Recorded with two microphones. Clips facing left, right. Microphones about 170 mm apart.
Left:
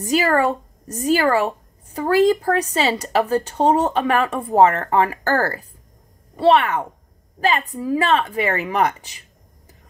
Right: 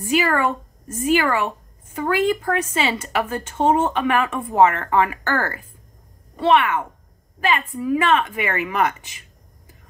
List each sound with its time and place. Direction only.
0.0 s speech: 40° left (ahead or behind)